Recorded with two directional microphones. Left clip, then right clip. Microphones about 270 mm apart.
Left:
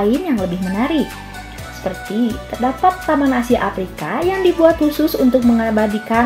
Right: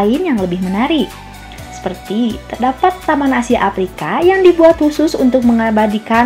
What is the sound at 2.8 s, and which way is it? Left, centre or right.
A woman's voice, right.